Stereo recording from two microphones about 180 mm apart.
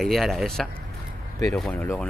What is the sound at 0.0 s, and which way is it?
Speech, centre (ahead or behind).